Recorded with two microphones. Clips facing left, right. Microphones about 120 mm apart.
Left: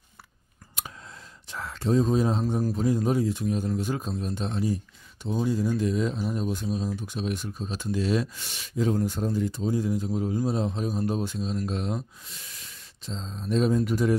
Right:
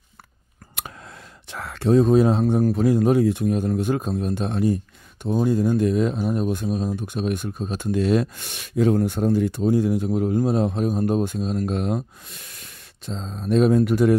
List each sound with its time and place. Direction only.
0.7 s speech: 65° right (ahead or behind)